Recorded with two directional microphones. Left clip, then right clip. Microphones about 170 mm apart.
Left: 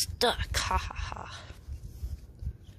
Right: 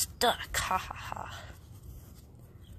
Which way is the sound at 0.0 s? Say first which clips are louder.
Left 1 dB; 45° left (ahead or behind).